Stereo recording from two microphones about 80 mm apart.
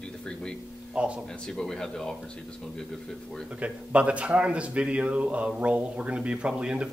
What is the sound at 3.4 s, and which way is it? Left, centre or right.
Speech, centre.